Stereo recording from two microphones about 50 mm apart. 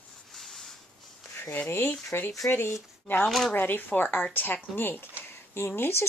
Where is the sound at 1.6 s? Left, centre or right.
Left.